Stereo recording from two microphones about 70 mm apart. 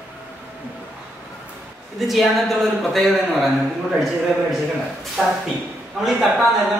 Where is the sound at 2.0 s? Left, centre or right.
Centre.